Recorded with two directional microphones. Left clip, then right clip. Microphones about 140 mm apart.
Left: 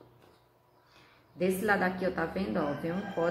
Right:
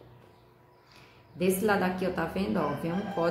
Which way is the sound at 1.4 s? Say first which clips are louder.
Right 1 dB; 20° right (ahead or behind).